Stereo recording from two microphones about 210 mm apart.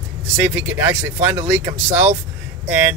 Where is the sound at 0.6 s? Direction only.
10° right (ahead or behind).